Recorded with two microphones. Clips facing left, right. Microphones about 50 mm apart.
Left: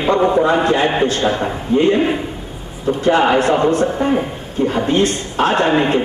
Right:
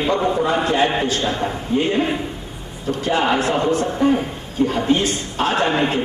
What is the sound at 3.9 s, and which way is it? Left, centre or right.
A man's voice, centre.